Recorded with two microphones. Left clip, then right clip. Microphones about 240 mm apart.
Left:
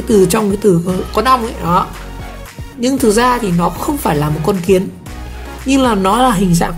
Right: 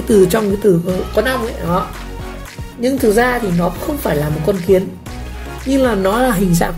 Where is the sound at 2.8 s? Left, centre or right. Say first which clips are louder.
Left 1 dB; centre.